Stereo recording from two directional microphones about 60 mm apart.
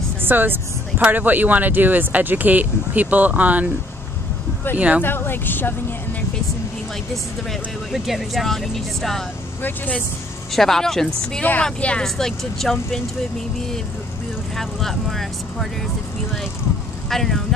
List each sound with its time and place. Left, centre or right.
0.2 s speech: right
4.7 s speech: right
5.0 s speech: left
7.9 s speech: centre
9.6 s speech: left
10.5 s speech: centre
11.6 s speech: centre
12.0 s speech: centre
14.6 s speech: centre
17.1 s speech: centre